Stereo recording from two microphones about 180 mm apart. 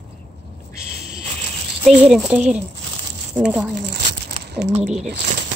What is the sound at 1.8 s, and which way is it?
A woman's voice, centre (ahead or behind).